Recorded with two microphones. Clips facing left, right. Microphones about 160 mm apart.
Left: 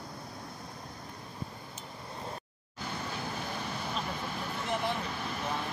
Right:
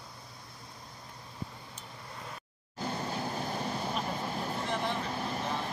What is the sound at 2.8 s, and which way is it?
Vehicle, 35° right (ahead or behind).